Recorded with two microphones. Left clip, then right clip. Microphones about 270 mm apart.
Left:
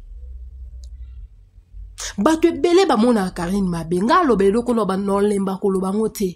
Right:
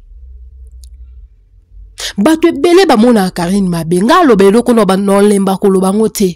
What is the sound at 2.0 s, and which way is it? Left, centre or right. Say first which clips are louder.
A woman's voice: right 7 dB; right.